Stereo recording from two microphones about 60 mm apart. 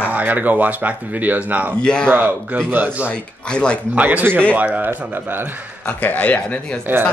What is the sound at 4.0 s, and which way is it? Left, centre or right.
Speech, right.